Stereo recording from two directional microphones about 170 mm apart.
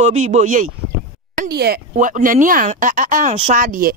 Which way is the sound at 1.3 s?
70° right (ahead or behind).